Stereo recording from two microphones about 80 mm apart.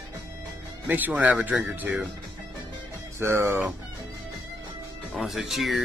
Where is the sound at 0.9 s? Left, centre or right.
Centre.